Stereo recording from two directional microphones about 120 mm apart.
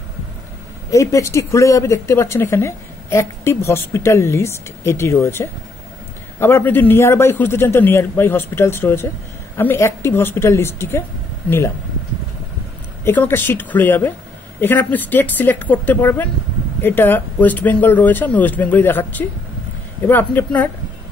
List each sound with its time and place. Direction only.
0.8 s speech: 25° left (ahead or behind)
13.0 s speech: 15° left (ahead or behind)